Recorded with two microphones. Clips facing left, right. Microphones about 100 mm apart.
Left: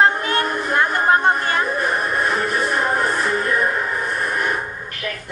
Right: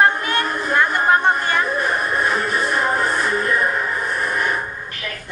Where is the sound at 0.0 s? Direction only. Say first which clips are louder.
Even; 10° left (ahead or behind).